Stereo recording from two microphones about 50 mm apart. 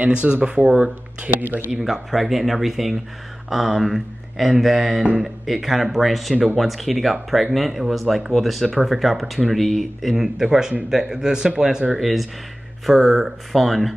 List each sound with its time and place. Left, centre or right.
0.0 s speech: right
1.8 s speech: centre
12.0 s speech: centre